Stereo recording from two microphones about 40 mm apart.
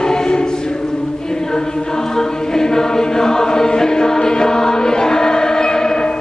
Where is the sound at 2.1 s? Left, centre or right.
Centre.